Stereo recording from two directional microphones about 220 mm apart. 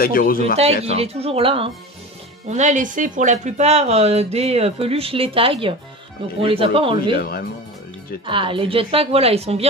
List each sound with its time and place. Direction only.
0.0 s speech: 40° left (ahead or behind)
0.8 s speech: 30° right (ahead or behind)
7.2 s speech: 45° left (ahead or behind)
8.3 s speech: 25° right (ahead or behind)